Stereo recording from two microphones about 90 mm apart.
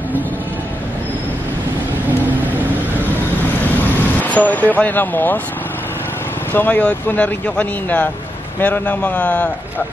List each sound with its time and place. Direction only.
4.2 s speech: 15° left (ahead or behind)
6.5 s speech: 20° left (ahead or behind)